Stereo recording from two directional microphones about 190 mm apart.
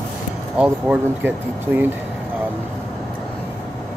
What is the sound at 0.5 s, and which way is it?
Speech, 5° right (ahead or behind).